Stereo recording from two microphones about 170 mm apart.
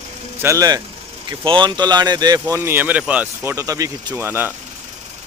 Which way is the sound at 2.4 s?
10° right (ahead or behind).